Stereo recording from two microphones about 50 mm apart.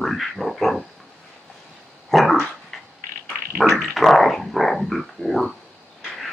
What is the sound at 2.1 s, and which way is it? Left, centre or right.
Dog, centre.